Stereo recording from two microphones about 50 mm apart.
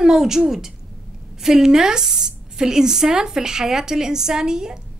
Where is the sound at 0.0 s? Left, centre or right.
Centre.